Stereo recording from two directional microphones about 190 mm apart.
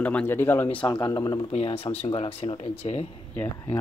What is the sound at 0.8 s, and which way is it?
Speech, 20° left (ahead or behind).